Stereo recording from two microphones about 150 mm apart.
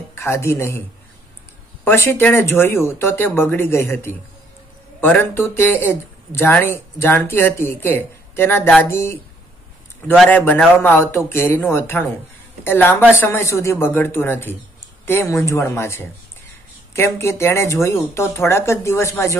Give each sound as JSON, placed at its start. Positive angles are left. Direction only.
{"t": 0.1, "sound": "speech", "side_deg": 15}
{"t": 1.9, "sound": "speech", "side_deg": 15}